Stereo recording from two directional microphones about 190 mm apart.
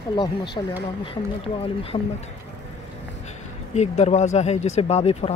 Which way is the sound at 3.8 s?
35° left (ahead or behind).